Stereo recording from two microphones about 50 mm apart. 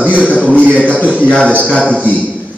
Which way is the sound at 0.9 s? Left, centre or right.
Left.